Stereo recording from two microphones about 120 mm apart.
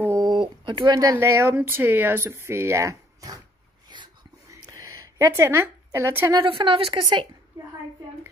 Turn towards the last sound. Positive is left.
turn(degrees=-45)  # may be behind; listen again after turning